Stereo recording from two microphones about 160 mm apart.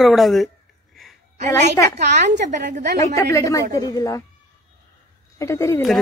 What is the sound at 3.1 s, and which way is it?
A woman's voice, 20° left (ahead or behind).